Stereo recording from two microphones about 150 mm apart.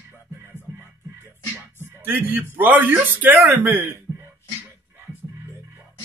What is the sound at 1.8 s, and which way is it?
Speech, 15° right (ahead or behind).